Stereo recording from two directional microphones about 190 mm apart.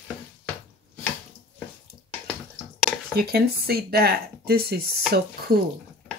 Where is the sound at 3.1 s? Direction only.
55° right (ahead or behind).